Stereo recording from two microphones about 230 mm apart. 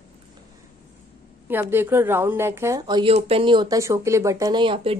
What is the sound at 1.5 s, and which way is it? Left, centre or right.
Speech, centre.